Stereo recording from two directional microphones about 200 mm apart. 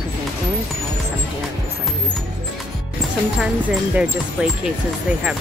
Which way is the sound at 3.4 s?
Centre (ahead or behind).